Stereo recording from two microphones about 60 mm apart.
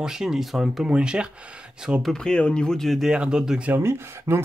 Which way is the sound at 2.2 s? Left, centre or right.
Centre.